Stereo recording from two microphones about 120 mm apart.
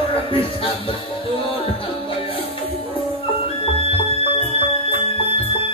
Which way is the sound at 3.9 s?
50° left (ahead or behind).